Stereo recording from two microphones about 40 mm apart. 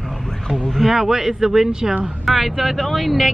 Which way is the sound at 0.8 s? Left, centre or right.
Centre.